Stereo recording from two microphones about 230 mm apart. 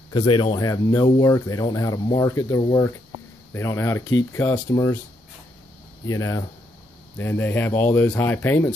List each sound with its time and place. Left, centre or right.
0.1 s speech: left
6.0 s speech: centre